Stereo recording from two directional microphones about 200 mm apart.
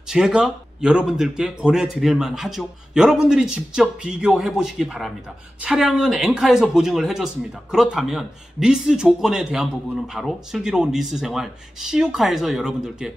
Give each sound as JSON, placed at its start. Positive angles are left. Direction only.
{"t": 0.1, "sound": "a man's voice", "side_deg": -5}